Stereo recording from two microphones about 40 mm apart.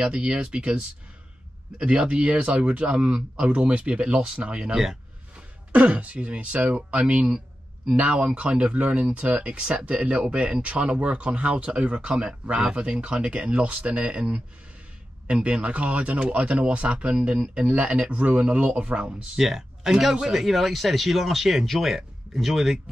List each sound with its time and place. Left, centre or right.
0.0 s a man's voice: right
15.2 s a man's voice: right
19.3 s speech: centre